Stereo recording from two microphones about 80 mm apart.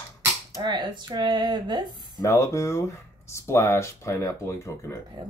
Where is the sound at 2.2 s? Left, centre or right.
Left.